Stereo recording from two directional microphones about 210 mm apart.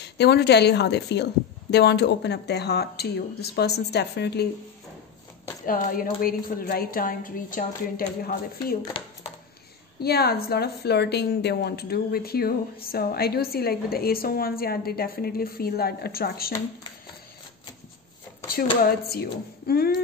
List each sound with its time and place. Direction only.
0.0 s a woman's voice: 50° left (ahead or behind)
5.7 s a woman's voice: 45° left (ahead or behind)
9.0 s speech: 25° left (ahead or behind)
9.9 s a woman's voice: 50° left (ahead or behind)
18.9 s a woman's voice: 50° left (ahead or behind)